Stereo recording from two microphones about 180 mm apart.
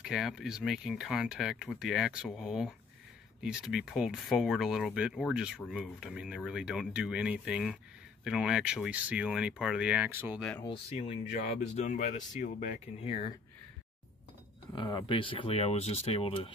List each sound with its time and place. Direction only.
0.0 s speech: centre (ahead or behind)
10.6 s speech: 30° left (ahead or behind)
14.8 s speech: 25° left (ahead or behind)